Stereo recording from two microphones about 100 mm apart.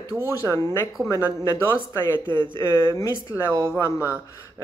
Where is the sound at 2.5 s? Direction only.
30° left (ahead or behind).